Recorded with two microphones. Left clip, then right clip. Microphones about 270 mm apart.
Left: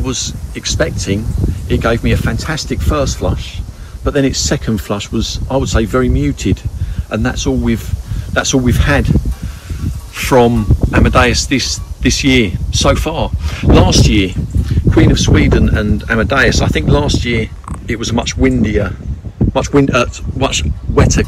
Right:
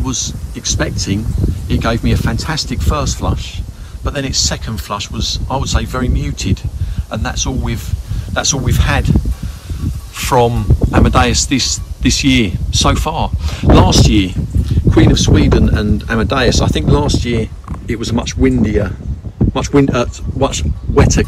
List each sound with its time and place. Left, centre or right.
0.0 s speech: centre
10.1 s speech: centre